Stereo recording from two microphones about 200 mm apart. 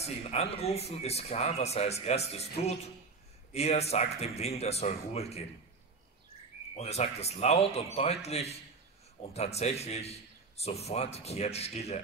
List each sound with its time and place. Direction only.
0.0 s speech: 30° left (ahead or behind)
6.8 s speech: 30° left (ahead or behind)